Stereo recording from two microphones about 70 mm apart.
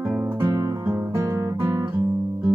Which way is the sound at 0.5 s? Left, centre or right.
Right.